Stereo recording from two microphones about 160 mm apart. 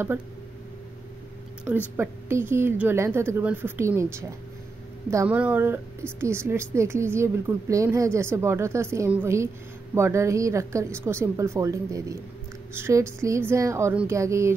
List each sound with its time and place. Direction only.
2.0 s a woman's voice: 15° right (ahead or behind)